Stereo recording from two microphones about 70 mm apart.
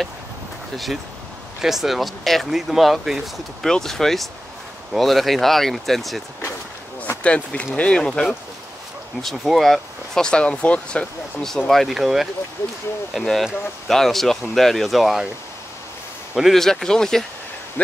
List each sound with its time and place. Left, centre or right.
1.6 s speech: centre
7.2 s speech: centre
16.3 s speech: centre
17.8 s speech: left